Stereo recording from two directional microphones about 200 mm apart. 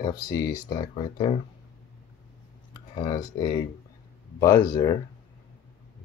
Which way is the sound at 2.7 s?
20° left (ahead or behind).